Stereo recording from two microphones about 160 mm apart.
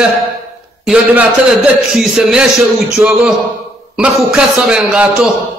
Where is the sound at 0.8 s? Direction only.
Centre (ahead or behind).